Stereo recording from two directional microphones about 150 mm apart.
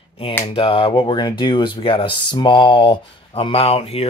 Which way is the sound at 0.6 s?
35° left (ahead or behind).